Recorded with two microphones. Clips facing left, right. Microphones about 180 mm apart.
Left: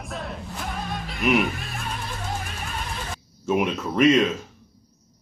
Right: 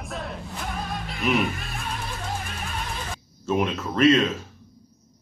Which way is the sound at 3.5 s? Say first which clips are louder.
Left 1 dB; 15° left (ahead or behind).